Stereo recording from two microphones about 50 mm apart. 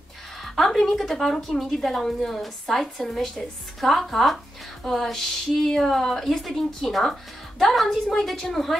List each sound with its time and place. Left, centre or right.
0.4 s speech: centre
4.8 s a sound: centre
5.7 s speech: centre